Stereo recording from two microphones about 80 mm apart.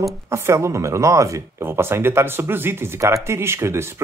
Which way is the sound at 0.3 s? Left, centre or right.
Right.